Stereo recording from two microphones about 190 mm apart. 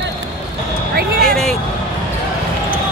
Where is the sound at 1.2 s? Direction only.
5° left (ahead or behind).